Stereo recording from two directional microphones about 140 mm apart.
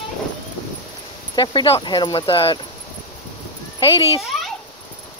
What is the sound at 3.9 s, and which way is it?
Speech, 45° left (ahead or behind).